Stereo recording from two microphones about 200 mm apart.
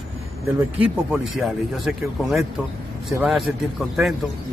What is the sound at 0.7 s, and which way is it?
A man's voice, 5° right (ahead or behind).